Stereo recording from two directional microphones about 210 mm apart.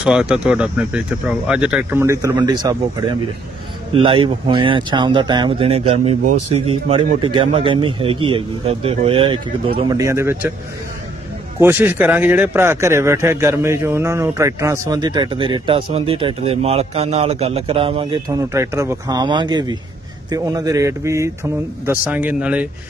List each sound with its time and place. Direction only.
0.0 s speech: 5° right (ahead or behind)
3.9 s a man's voice: 25° right (ahead or behind)
11.6 s speech: 10° right (ahead or behind)